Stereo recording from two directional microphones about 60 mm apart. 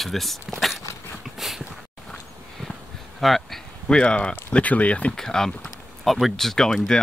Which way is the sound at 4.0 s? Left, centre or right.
Centre.